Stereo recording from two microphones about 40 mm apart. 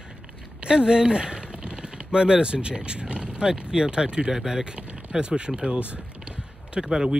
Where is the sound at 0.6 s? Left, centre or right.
Right.